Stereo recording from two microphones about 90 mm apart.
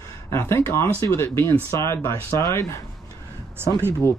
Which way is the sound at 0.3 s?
30° left (ahead or behind).